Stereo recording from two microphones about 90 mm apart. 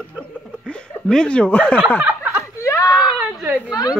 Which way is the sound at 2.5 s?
35° left (ahead or behind).